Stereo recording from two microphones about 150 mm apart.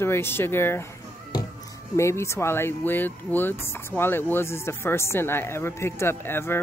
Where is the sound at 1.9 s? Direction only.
20° left (ahead or behind).